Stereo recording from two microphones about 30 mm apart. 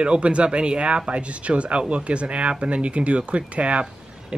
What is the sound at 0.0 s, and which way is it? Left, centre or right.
Speech, right.